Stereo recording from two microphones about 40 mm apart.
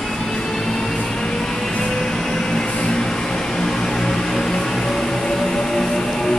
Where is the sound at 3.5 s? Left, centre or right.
Centre.